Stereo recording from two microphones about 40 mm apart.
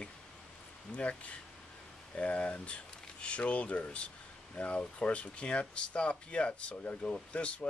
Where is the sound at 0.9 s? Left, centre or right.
Left.